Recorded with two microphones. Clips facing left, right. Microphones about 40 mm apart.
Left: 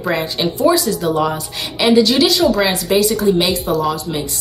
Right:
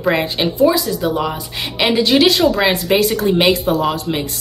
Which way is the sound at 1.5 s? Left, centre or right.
Right.